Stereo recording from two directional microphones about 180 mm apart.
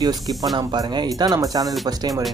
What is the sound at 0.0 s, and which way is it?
Speech, 20° right (ahead or behind).